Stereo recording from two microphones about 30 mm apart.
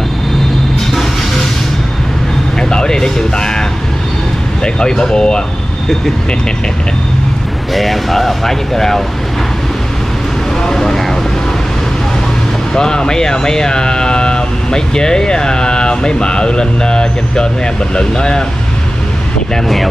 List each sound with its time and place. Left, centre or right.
2.7 s speech: left
4.7 s speech: left
7.7 s speech: centre
10.7 s vehicle: centre
12.7 s speech: left